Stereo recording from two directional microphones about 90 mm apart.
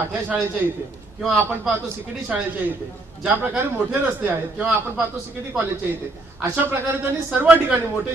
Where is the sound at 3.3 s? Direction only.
25° right (ahead or behind).